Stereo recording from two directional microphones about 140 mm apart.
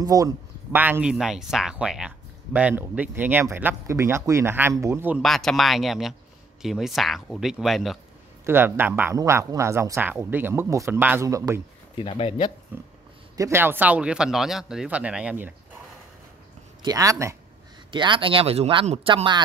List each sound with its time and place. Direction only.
0.0 s speech: 25° right (ahead or behind)
0.7 s speech: 10° right (ahead or behind)
5.2 s speech: centre (ahead or behind)
8.5 s speech: 15° right (ahead or behind)
12.0 s speech: 40° left (ahead or behind)
12.7 s speech: 15° right (ahead or behind)
16.8 s speech: 25° right (ahead or behind)
17.9 s speech: 35° right (ahead or behind)